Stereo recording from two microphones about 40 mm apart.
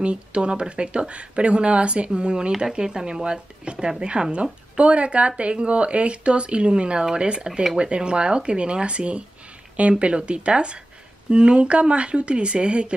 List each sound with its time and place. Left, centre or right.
0.0 s speech: right